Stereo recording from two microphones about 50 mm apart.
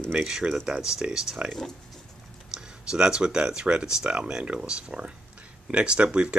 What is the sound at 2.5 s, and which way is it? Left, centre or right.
Speech, centre.